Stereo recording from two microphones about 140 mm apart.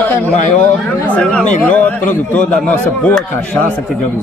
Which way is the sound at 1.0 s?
10° left (ahead or behind).